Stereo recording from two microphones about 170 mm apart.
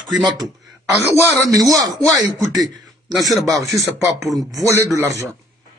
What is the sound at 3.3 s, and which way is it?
Speech, centre (ahead or behind).